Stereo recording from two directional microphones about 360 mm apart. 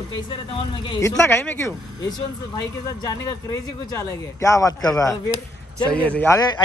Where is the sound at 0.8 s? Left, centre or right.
Centre.